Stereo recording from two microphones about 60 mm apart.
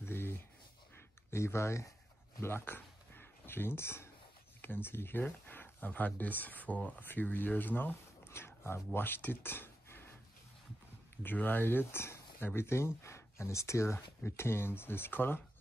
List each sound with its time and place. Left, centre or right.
0.0 s a sound: left
1.3 s speech: left
2.4 s speech: left
8.3 s speech: left
11.2 s speech: left